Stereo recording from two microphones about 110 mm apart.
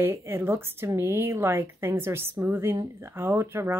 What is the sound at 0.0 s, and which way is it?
Speech, 20° right (ahead or behind).